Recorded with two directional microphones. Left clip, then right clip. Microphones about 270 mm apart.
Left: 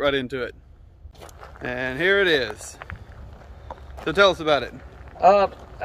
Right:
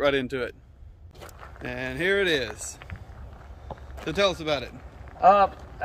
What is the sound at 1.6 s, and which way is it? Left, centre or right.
Speech, centre.